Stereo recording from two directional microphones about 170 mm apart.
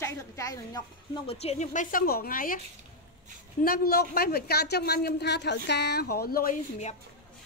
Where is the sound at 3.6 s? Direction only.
60° left (ahead or behind).